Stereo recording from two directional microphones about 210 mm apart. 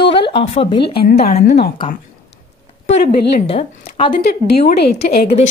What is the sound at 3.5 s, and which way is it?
Speech, 25° left (ahead or behind).